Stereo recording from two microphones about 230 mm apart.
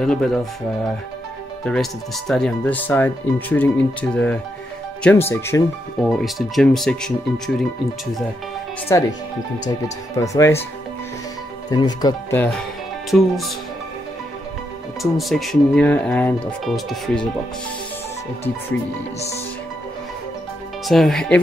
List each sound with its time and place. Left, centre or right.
0.0 s speech: centre
1.6 s speech: centre
6.0 s speech: centre
8.9 s speech: centre
10.1 s speech: centre
11.7 s speech: centre
13.1 s speech: centre
15.0 s speech: centre
20.8 s speech: centre